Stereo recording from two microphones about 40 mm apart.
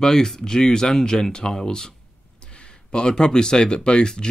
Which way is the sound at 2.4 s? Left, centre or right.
Left.